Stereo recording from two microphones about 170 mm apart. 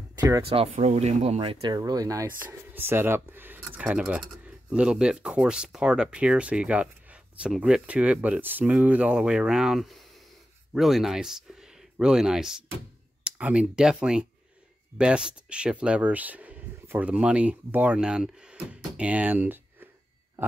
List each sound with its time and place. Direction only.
0.5 s speech: 35° right (ahead or behind)
1.8 s speech: 20° right (ahead or behind)